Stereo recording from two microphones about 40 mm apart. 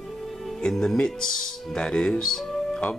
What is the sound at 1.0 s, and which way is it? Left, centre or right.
Speech, centre.